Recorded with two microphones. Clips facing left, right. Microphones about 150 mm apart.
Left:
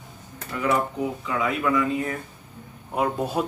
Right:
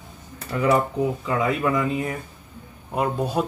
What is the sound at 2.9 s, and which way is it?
Speech, centre (ahead or behind).